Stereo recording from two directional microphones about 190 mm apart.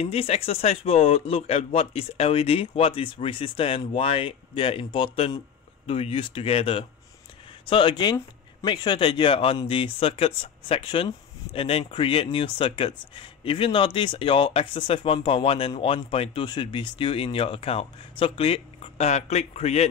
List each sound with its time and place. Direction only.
0.0 s speech: 30° left (ahead or behind)